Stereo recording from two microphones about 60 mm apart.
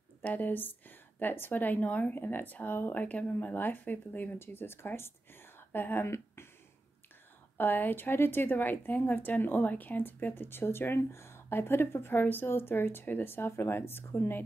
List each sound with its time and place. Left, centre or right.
0.2 s a woman's voice: left
6.0 s speech: left
7.5 s a woman's voice: left